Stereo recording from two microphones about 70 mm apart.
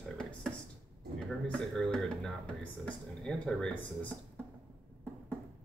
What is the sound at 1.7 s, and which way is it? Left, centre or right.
Speech, centre.